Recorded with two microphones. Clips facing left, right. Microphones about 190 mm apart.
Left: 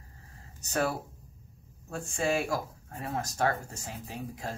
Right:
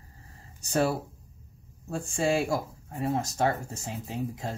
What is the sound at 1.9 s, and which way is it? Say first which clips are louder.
Speech: right 3 dB; 30° right (ahead or behind).